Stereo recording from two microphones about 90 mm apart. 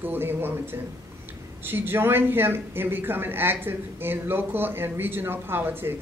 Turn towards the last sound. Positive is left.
turn(degrees=-25)  # may be behind; listen again after turning